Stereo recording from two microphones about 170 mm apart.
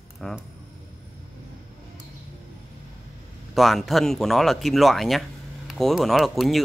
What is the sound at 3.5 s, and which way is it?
Speech, centre (ahead or behind).